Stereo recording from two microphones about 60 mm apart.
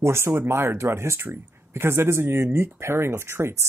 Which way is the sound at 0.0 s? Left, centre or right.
Right.